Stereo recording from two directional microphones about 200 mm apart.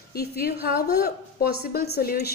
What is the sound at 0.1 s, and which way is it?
A woman's voice, 50° left (ahead or behind).